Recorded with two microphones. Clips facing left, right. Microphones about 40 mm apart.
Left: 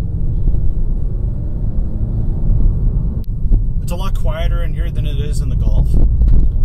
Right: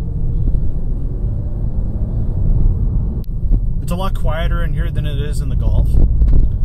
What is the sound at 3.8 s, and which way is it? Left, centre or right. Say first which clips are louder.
Speech: right 5 dB; right.